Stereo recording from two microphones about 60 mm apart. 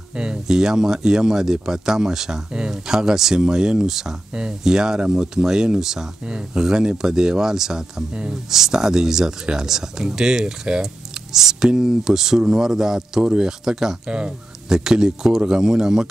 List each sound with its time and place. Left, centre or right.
0.1 s speech: centre